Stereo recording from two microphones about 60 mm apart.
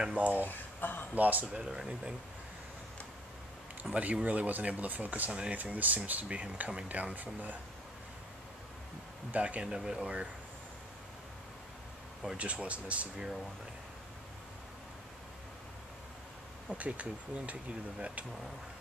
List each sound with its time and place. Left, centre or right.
0.0 s speech: right
0.4 s speech: left
1.1 s speech: right
1.5 s speech: centre
3.9 s speech: right
5.3 s speech: centre
5.6 s speech: right
9.3 s speech: right
12.4 s speech: right
16.7 s speech: right